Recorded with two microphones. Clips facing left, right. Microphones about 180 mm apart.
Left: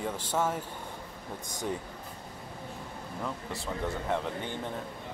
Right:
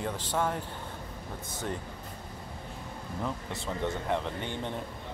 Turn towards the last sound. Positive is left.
turn(degrees=0)  # may be behind; listen again after turning